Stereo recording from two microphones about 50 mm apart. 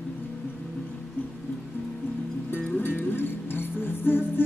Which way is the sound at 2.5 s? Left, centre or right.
Left.